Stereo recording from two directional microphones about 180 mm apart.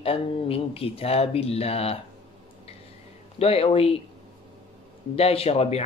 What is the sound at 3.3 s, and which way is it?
Speech, 35° left (ahead or behind).